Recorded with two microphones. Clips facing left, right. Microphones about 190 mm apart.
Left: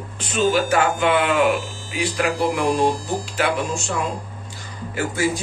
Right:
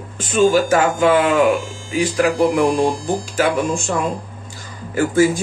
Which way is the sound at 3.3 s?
45° right (ahead or behind).